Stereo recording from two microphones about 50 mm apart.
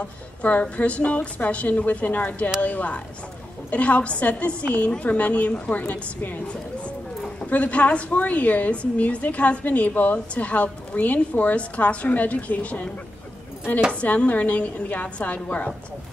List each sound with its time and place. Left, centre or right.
0.0 s a woman's voice: left
6.4 s a woman's voice: left
14.0 s a woman's voice: left